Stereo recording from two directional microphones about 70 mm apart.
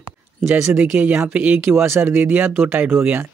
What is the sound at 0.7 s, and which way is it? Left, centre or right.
Speech, right.